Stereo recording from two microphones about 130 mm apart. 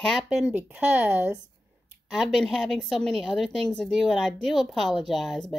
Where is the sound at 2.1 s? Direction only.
Centre (ahead or behind).